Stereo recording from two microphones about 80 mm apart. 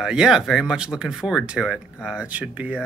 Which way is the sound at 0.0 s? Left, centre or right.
Centre.